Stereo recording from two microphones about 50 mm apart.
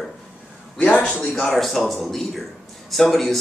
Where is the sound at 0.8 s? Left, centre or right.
Left.